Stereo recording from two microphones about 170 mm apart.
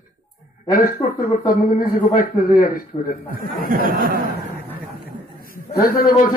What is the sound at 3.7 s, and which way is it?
Speech, 55° right (ahead or behind).